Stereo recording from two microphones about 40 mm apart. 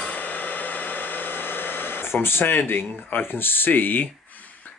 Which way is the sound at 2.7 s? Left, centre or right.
Left.